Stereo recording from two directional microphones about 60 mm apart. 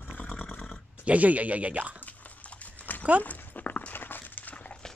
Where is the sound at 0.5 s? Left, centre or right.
Left.